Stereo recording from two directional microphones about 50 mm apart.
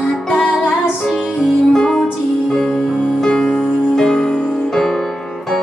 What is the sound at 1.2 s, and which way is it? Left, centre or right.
Music, centre.